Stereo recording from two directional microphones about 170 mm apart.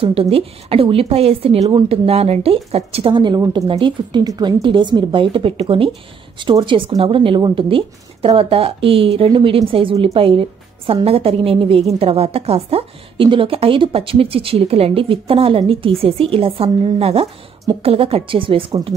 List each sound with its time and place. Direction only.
0.0 s a woman's voice: 35° right (ahead or behind)